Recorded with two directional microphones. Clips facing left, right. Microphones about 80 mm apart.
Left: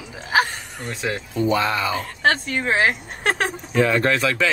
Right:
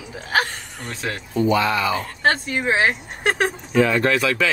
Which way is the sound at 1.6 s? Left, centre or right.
Left.